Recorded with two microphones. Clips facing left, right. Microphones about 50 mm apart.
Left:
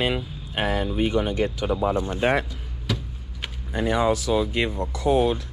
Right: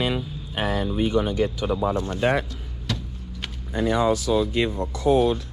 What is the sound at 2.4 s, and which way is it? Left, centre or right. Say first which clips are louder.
Vehicle: left 1 dB; centre.